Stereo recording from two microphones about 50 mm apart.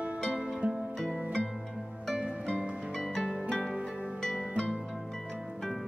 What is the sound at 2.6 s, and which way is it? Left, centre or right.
Music, centre.